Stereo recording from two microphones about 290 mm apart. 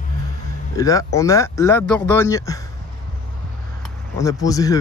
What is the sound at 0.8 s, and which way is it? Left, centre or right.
Speech, centre.